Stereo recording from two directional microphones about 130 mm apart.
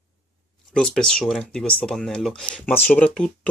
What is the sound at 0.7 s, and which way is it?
Speech, 5° left (ahead or behind).